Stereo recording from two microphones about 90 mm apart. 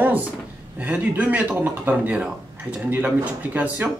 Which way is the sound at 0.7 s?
15° right (ahead or behind).